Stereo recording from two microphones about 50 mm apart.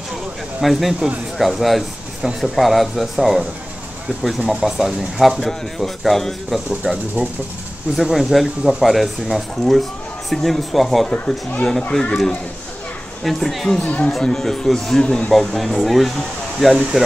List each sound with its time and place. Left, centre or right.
0.6 s speech: centre
4.5 s speech: centre
6.7 s speech: centre
11.9 s speech: centre
13.2 s speech: centre
13.8 s speech: left
14.2 s speech: centre
15.3 s speech: centre